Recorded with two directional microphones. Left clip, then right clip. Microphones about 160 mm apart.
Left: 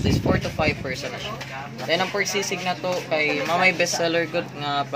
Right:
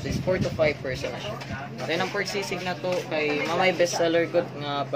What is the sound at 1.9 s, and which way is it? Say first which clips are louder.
Speech: left 4 dB; 55° left (ahead or behind).